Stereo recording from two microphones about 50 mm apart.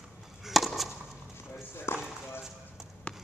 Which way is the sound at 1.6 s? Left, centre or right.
Left.